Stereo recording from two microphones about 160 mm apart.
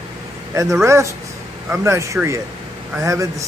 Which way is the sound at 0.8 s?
20° right (ahead or behind).